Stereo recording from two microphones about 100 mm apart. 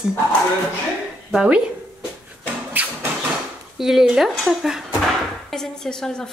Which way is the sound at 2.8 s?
15° right (ahead or behind).